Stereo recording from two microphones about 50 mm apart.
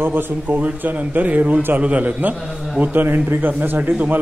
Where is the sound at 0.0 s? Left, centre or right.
Right.